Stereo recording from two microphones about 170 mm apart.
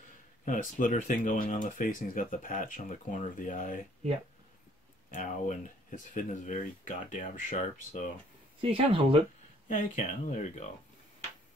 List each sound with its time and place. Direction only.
0.5 s speech: 50° left (ahead or behind)
5.1 s speech: 50° left (ahead or behind)
8.5 s speech: 35° right (ahead or behind)
9.7 s speech: 45° left (ahead or behind)